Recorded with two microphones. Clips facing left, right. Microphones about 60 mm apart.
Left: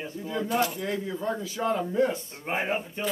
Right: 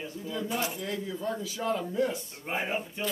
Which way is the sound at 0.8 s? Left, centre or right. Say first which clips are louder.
Left 3 dB; left.